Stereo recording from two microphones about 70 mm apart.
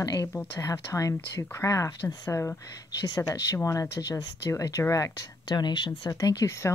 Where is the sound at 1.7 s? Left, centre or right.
Left.